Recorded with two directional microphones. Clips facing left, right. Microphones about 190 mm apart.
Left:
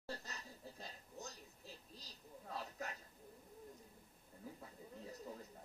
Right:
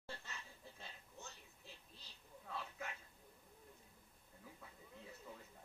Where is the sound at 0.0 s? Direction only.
40° left (ahead or behind).